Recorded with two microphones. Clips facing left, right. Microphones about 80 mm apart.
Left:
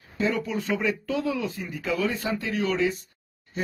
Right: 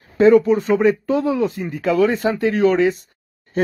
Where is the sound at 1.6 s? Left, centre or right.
Right.